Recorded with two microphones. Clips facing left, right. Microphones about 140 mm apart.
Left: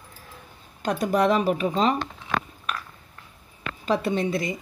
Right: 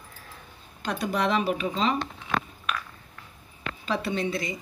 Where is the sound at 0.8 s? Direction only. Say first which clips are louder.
Left 5 dB; 45° left (ahead or behind).